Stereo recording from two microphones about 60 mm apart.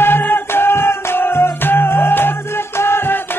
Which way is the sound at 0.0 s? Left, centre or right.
Left.